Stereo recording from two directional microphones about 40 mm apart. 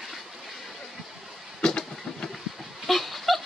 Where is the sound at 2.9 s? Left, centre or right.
Centre.